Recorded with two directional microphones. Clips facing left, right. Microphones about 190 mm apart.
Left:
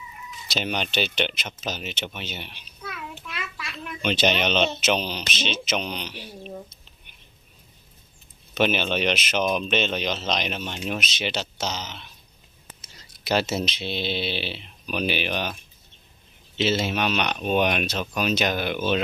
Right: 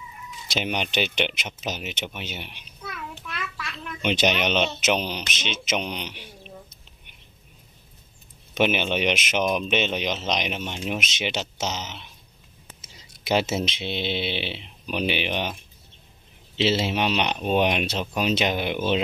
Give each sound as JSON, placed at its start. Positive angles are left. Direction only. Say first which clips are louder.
{"t": 0.5, "sound": "speech", "louder": "right 1 dB", "side_deg": -15}
{"t": 2.9, "sound": "a sound", "louder": "right 1 dB", "side_deg": 10}
{"t": 4.0, "sound": "speech", "louder": "even", "side_deg": -15}
{"t": 8.5, "sound": "speech", "louder": "even", "side_deg": -15}
{"t": 13.3, "sound": "speech", "louder": "right 1 dB", "side_deg": -20}